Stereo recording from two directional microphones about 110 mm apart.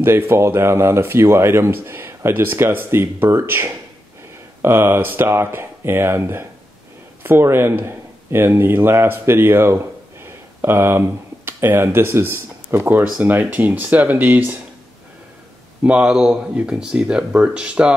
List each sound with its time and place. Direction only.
0.0 s speech: 20° right (ahead or behind)
15.8 s speech: 10° right (ahead or behind)